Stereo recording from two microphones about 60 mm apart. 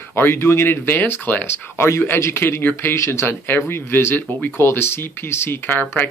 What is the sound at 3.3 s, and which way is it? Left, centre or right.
Speech, left.